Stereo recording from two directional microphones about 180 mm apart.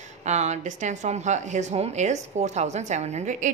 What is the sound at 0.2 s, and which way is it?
A woman's voice, 40° right (ahead or behind).